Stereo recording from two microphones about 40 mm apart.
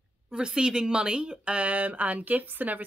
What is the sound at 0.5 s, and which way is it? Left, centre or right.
Speech, centre.